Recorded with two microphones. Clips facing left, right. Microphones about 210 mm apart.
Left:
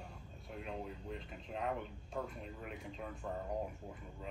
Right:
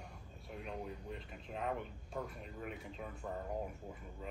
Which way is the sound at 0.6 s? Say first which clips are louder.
Even; centre (ahead or behind).